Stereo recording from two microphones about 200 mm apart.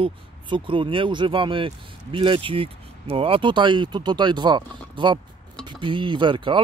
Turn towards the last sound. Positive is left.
turn(degrees=-25)  # may be behind; listen again after turning